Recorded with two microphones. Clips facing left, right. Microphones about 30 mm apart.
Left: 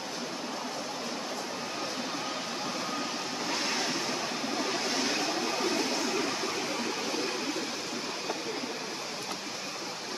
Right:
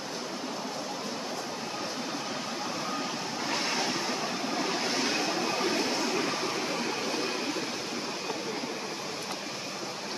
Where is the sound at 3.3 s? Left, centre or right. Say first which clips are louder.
Right 2 dB; centre.